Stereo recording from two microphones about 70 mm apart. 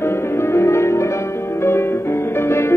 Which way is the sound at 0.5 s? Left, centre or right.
Left.